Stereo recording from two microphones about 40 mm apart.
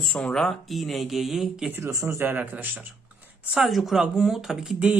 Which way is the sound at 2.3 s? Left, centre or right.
Right.